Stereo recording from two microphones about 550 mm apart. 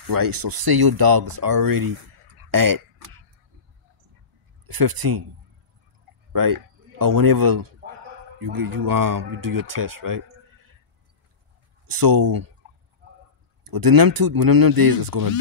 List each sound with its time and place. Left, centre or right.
0.0 s speech: right
4.6 s speech: right
6.3 s speech: right
11.9 s speech: right
13.7 s speech: right